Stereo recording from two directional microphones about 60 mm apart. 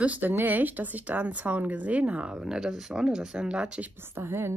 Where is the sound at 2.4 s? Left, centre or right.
Centre.